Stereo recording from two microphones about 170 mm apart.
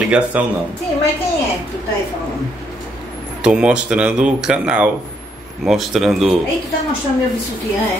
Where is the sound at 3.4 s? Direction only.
5° right (ahead or behind).